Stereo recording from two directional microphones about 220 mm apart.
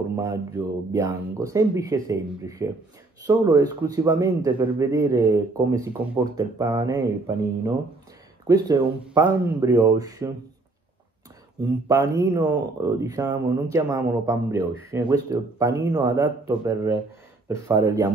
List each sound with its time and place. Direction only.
0.1 s a man's voice: 15° right (ahead or behind)
11.6 s a man's voice: 15° right (ahead or behind)